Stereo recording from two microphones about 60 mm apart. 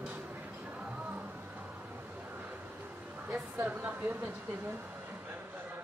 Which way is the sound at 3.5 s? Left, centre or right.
Right.